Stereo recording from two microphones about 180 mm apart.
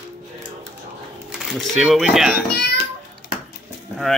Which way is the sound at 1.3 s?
Centre (ahead or behind).